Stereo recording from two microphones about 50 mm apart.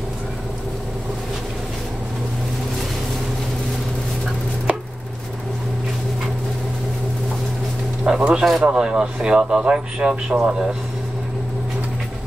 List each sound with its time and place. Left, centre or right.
8.0 s a man's voice: centre